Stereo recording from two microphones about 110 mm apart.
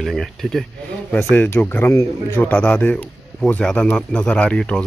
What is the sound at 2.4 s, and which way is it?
A man's voice, 10° left (ahead or behind).